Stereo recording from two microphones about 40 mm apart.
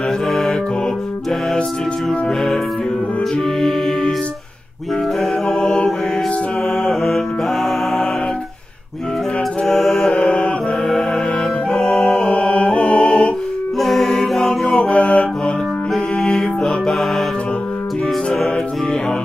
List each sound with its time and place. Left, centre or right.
0.3 s music: centre
5.5 s mantra: centre
6.9 s mantra: centre
9.7 s mantra: centre
10.1 s mantra: left
11.7 s music: centre
13.7 s mantra: centre
14.7 s music: left
16.3 s music: centre